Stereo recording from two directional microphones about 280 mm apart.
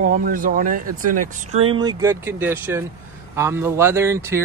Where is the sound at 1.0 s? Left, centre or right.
Right.